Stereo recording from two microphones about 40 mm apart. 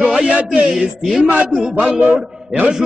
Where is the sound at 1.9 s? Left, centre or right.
Right.